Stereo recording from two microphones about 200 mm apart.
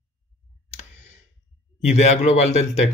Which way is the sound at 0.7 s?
35° left (ahead or behind).